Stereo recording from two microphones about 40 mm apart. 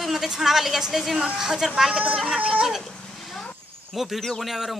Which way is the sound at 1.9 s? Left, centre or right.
Right.